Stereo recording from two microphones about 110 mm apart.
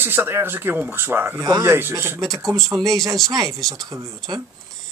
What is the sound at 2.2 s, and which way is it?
Speech, 30° right (ahead or behind).